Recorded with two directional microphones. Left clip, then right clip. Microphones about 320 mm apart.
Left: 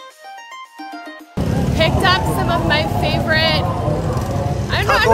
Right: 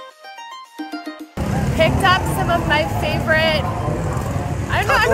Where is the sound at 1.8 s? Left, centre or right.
Centre.